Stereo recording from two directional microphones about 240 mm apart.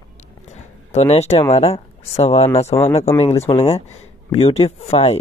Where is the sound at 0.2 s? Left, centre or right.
Left.